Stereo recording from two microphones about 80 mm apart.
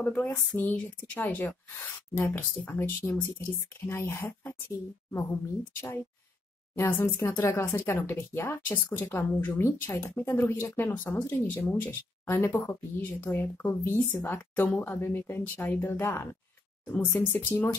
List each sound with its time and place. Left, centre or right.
0.0 s a woman's voice: left
6.7 s speech: left